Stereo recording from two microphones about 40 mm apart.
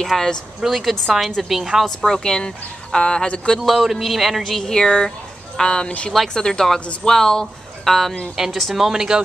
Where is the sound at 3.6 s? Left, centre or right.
Centre.